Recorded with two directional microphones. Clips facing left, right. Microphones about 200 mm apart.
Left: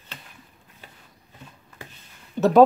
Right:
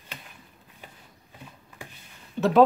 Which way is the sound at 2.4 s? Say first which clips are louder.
Left 4 dB; 40° left (ahead or behind).